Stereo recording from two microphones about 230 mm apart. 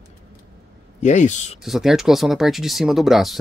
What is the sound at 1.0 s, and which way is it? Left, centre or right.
Speech, left.